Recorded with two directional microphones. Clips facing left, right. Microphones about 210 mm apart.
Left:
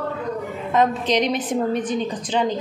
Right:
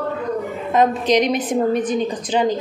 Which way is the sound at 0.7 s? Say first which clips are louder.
Right 3 dB; 15° right (ahead or behind).